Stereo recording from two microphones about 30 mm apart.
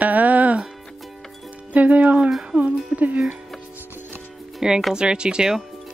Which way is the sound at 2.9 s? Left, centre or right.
Right.